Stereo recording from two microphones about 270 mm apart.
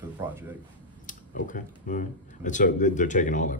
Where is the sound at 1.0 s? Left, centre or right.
Left.